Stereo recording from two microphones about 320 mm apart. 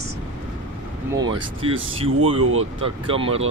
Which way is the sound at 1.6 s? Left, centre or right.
Centre.